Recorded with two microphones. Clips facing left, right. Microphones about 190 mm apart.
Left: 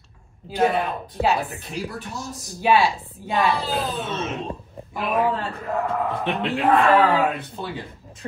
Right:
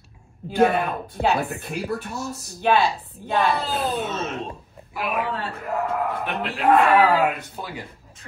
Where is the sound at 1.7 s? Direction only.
55° right (ahead or behind).